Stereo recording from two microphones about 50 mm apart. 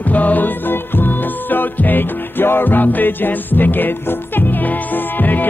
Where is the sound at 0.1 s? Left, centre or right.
Left.